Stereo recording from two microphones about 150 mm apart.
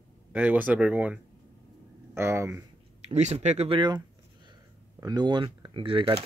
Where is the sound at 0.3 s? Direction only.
10° right (ahead or behind).